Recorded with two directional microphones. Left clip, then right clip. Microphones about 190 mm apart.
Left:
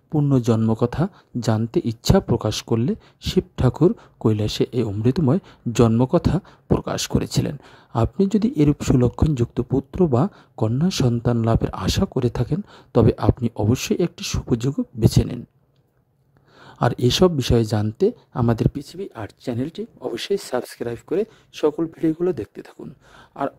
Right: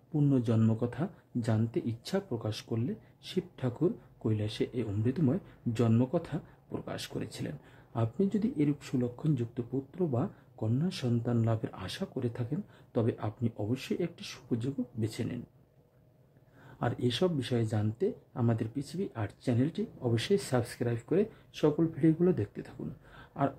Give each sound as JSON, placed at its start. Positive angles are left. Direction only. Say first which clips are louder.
{"t": 0.3, "sound": "speech", "louder": "left 11 dB", "side_deg": 45}
{"t": 16.8, "sound": "speech", "louder": "left 13 dB", "side_deg": 40}